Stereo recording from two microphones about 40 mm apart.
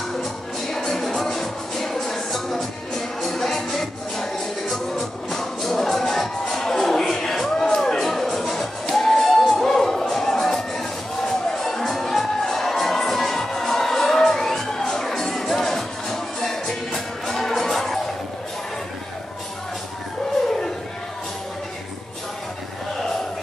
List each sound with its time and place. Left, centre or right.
0.1 s music: centre